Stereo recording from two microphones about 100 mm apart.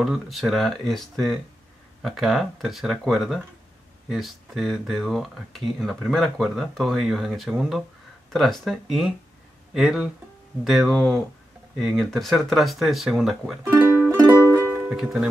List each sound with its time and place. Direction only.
0.0 s speech: centre (ahead or behind)
14.2 s music: 30° right (ahead or behind)
14.9 s speech: 5° right (ahead or behind)